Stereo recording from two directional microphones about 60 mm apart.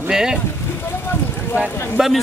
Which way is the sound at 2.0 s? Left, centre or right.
Centre.